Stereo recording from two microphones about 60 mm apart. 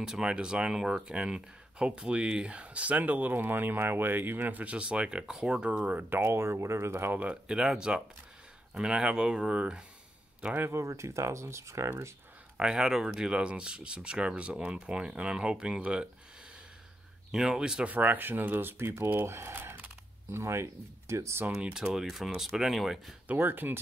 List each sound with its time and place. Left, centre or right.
0.0 s speech: centre; by 7.2 s right
7.4 s speech: centre
10.7 s speech: right
12.5 s speech: centre
17.3 s speech: centre
17.8 s speech: right
19.5 s speech: right
21.5 s speech: centre
23.2 s speech: right